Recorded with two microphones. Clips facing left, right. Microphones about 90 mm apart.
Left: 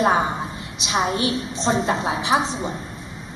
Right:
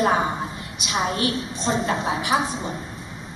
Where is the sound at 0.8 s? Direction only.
25° left (ahead or behind).